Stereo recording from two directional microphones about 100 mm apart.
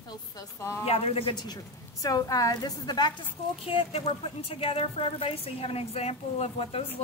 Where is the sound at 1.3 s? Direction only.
45° left (ahead or behind).